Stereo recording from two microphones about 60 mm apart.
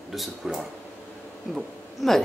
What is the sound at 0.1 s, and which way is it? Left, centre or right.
A woman's voice, centre.